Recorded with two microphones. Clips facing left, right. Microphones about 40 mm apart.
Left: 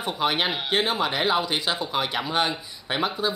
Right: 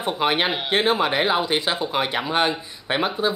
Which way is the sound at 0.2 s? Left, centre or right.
Right.